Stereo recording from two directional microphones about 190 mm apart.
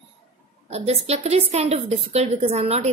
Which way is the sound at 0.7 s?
35° right (ahead or behind).